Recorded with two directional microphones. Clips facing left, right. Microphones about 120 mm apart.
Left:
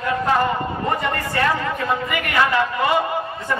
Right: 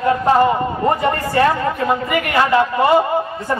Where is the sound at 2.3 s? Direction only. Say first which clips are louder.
Right 4 dB; 30° right (ahead or behind).